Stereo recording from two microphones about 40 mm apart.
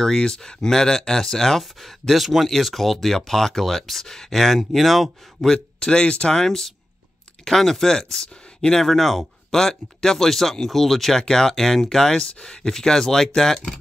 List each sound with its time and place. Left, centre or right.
0.0 s speech: centre
5.5 s speech: centre
5.9 s speech: left